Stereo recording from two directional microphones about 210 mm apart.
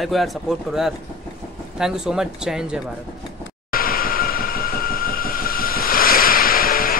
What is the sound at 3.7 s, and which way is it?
Train, 45° left (ahead or behind).